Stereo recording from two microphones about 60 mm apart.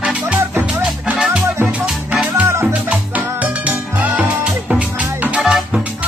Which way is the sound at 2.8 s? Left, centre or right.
Right.